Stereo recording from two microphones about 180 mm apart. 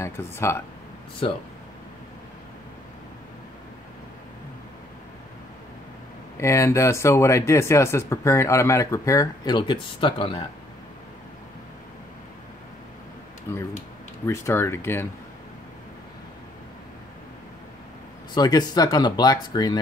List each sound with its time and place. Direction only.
0.0 s speech: 15° left (ahead or behind)
6.3 s speech: 15° left (ahead or behind)
13.5 s speech: 15° left (ahead or behind)
18.3 s speech: 20° left (ahead or behind)